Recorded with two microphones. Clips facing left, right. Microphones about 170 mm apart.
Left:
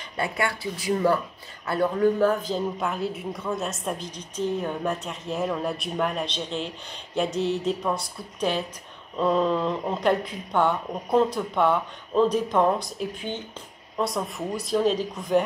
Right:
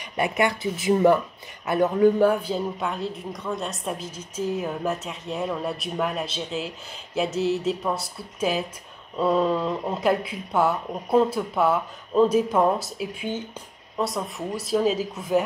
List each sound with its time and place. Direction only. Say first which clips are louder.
0.2 s a woman's voice: right 4 dB; 20° right (ahead or behind); by 15.4 s 5° right (ahead or behind)